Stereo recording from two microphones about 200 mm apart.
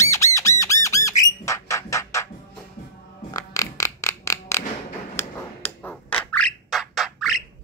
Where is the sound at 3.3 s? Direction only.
15° left (ahead or behind); by 7.4 s centre (ahead or behind).